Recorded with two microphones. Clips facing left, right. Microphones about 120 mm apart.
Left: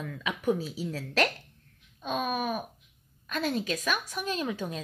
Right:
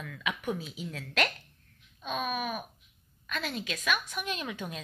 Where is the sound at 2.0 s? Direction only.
40° left (ahead or behind).